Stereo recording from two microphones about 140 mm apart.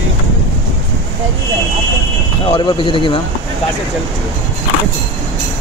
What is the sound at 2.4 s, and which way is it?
Speech, 35° left (ahead or behind).